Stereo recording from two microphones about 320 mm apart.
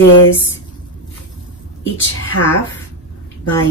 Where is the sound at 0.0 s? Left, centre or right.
Left.